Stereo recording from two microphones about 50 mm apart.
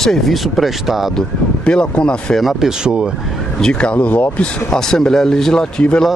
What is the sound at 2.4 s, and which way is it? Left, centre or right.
Speech, centre.